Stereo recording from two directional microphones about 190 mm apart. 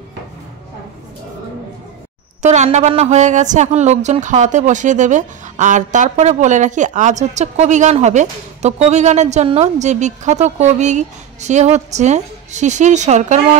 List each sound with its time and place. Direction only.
2.4 s a woman's voice: 40° right (ahead or behind)